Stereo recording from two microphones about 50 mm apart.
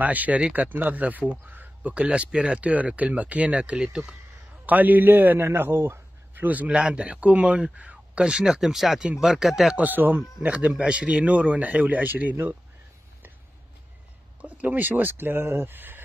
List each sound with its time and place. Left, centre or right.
0.0 s speech: right
4.6 s speech: right
5.5 s a sound: right
6.4 s speech: right
6.8 s speech: right; by 9.8 s centre
9.8 s speech: right
10.7 s speech: right
14.4 s speech: right
15.7 s speech: right